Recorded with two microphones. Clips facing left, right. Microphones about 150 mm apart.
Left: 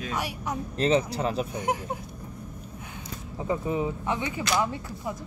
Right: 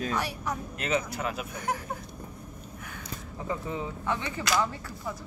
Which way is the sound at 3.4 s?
20° left (ahead or behind).